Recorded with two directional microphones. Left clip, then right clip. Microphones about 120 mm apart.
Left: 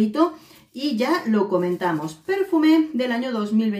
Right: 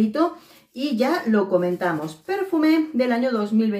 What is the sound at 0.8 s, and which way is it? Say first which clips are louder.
A woman's voice: even; 15° left (ahead or behind).